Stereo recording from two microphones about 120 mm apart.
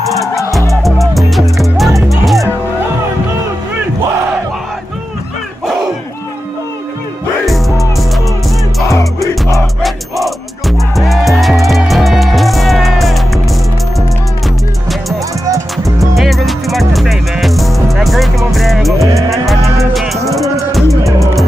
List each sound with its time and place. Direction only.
0.8 s music: centre (ahead or behind)
7.4 s music: centre (ahead or behind)
8.8 s music: 25° left (ahead or behind)
9.8 s music: centre (ahead or behind)
16.2 s music: centre (ahead or behind)